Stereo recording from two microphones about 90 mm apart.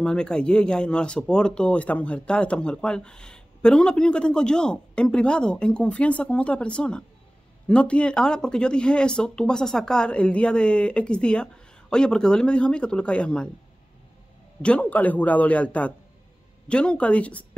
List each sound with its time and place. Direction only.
0.0 s speech: 10° left (ahead or behind)
14.6 s speech: 15° left (ahead or behind)